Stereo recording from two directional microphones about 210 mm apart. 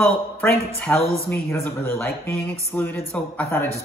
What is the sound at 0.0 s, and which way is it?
Speech, 10° left (ahead or behind).